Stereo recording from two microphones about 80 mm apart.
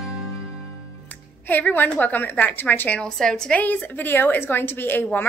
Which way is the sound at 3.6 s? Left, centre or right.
Left.